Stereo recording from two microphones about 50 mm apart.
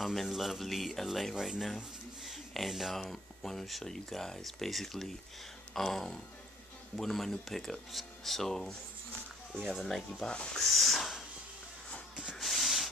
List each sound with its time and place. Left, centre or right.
0.0 s speech: centre
7.0 s speech: centre
9.8 s speech: centre
10.2 s speech: centre
10.6 s a sound: centre
12.4 s a sound: centre